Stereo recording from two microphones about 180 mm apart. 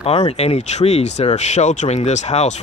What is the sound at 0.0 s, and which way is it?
Speech, 35° left (ahead or behind).